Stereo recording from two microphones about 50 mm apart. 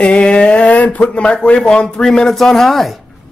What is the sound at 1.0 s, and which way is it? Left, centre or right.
A man's voice, left.